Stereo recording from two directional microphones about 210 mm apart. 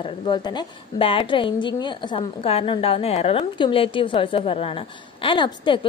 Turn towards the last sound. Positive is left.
turn(degrees=20)  # may be behind; listen again after turning